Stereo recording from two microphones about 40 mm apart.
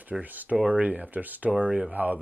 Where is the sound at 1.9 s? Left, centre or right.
Right.